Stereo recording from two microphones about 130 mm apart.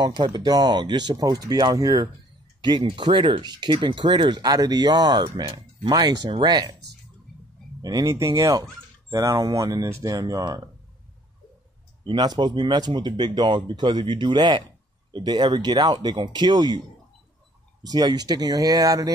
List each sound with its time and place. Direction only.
0.0 s speech: 35° right (ahead or behind)
7.8 s speech: 30° right (ahead or behind)
12.0 s speech: 35° right (ahead or behind)
17.8 s speech: 30° right (ahead or behind)